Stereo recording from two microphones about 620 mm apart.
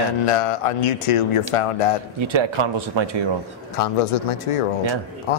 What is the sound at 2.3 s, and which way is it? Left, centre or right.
Speech, right.